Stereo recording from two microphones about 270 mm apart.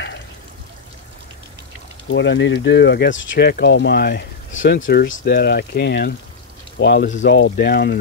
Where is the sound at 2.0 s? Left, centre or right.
Left.